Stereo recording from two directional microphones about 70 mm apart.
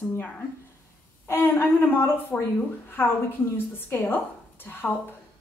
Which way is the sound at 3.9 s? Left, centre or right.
Left.